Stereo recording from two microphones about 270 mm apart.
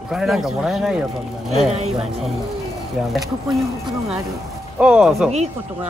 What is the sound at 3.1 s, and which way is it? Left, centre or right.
Speech, centre.